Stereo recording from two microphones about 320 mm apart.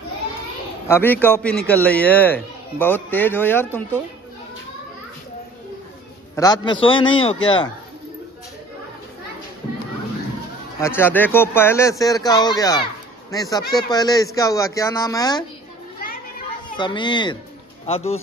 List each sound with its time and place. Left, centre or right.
0.8 s a man's voice: centre
6.3 s speech: centre
10.8 s speech: centre
16.7 s speech: centre